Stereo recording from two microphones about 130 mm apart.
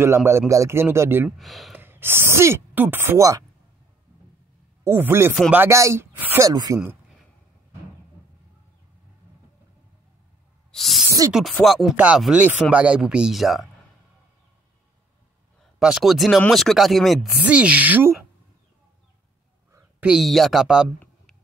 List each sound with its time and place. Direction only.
0.0 s a man's voice: 20° right (ahead or behind)
1.4 s speech: centre (ahead or behind)
1.8 s speech: 15° right (ahead or behind)
4.8 s a man's voice: 15° right (ahead or behind)
10.7 s a sound: centre (ahead or behind)
11.3 s speech: centre (ahead or behind)
15.8 s speech: 5° right (ahead or behind)
17.4 s speech: 10° right (ahead or behind)
20.0 s speech: 5° right (ahead or behind)